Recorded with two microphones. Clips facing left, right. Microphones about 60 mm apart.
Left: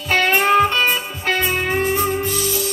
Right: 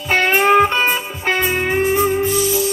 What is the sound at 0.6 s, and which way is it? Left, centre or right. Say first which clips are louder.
Music: right 2 dB; centre.